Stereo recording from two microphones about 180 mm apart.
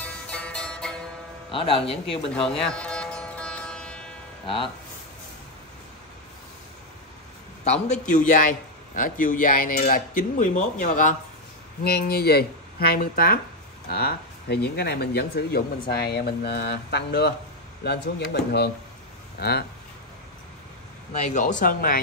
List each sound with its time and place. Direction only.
0.3 s music: 5° left (ahead or behind)
1.5 s speech: 30° left (ahead or behind)
2.5 s music: 5° left (ahead or behind)
7.6 s speech: 40° left (ahead or behind)
11.8 s speech: 60° left (ahead or behind)
21.2 s speech: 40° left (ahead or behind)